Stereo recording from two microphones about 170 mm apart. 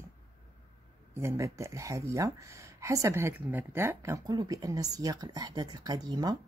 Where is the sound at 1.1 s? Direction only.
15° right (ahead or behind).